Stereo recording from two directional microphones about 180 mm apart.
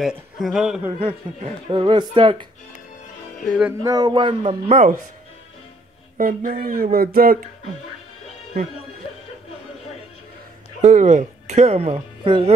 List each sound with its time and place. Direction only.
0.0 s a man's voice: centre (ahead or behind)
0.9 s speech: 30° right (ahead or behind)
3.4 s a man's voice: 5° right (ahead or behind)
3.8 s speech: 20° right (ahead or behind)
4.5 s speech: 40° right (ahead or behind)
6.1 s speech: 50° right (ahead or behind)
10.8 s speech: 45° right (ahead or behind)